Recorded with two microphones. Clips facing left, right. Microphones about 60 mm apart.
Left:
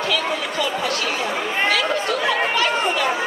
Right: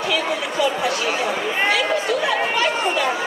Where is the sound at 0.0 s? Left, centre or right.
Centre.